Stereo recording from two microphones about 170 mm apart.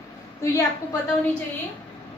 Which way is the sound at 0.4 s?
15° left (ahead or behind).